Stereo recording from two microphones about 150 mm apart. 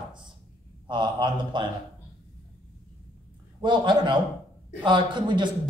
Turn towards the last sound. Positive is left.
turn(degrees=-30)  # may be behind; listen again after turning